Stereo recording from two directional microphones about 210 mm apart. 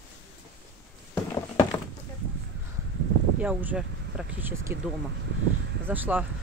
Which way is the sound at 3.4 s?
5° right (ahead or behind).